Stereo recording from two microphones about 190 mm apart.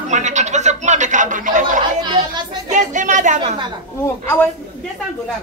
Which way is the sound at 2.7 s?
40° right (ahead or behind).